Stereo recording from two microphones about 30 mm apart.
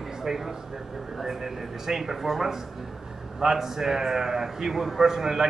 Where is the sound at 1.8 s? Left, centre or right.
Centre.